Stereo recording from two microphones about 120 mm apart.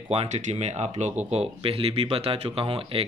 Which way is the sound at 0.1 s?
60° right (ahead or behind).